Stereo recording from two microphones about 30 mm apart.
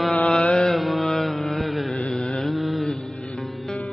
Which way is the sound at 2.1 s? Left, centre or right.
Left.